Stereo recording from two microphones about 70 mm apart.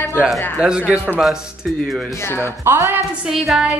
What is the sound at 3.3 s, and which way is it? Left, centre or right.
Music, centre.